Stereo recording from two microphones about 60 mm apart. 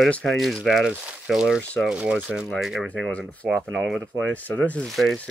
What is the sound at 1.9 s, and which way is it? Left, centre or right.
Speech, centre.